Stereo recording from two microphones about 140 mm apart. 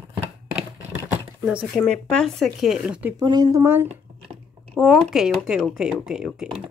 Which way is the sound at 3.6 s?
15° right (ahead or behind).